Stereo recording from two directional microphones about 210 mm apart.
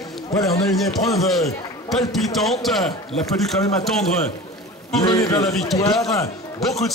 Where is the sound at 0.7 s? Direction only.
Centre (ahead or behind).